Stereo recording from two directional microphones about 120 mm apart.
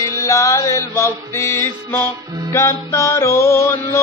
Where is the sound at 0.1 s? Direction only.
25° left (ahead or behind).